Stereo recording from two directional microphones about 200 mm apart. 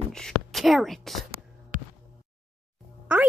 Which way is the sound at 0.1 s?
Centre (ahead or behind).